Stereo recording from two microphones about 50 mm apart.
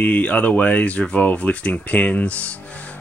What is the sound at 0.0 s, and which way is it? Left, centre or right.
Speech, left.